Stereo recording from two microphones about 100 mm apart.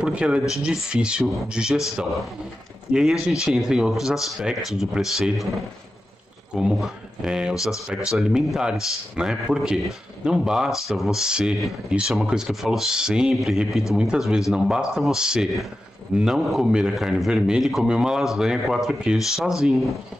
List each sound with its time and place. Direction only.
0.0 s a man's voice: 10° right (ahead or behind)
2.9 s speech: 5° right (ahead or behind)
6.5 s a man's voice: 5° right (ahead or behind)